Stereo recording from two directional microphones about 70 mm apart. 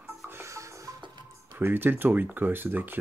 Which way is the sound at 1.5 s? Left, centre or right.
Right.